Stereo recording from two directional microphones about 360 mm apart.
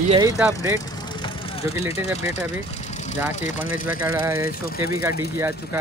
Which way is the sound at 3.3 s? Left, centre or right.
Left.